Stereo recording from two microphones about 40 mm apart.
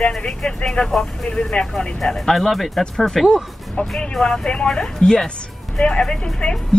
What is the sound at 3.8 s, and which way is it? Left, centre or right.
Speech, left.